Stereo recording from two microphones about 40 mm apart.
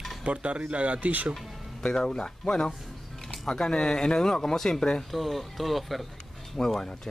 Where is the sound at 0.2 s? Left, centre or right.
Right.